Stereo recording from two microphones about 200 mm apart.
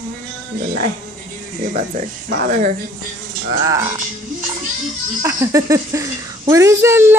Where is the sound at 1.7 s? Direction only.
40° right (ahead or behind).